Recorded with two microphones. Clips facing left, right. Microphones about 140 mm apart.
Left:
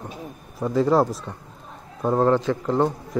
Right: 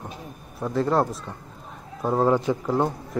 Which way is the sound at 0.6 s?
Centre (ahead or behind).